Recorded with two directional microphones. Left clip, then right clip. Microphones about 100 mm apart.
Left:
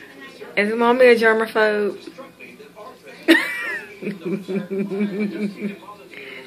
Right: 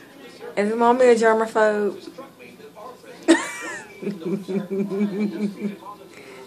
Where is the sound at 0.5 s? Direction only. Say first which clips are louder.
Left 2 dB; 5° right (ahead or behind).